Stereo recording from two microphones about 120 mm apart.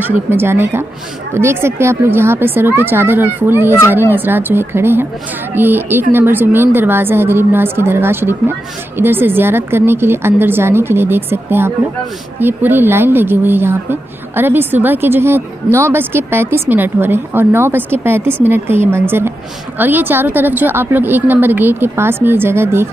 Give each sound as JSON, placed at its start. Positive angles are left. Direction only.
{"t": 0.0, "sound": "a woman's voice", "side_deg": -20}